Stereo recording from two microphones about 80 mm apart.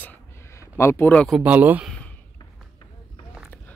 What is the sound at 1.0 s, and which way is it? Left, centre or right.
Speech, centre.